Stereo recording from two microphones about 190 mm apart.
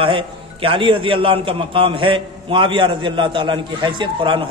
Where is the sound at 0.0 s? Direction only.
30° right (ahead or behind).